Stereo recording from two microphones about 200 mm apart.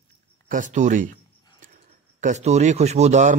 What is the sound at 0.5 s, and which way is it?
Speech, 40° right (ahead or behind).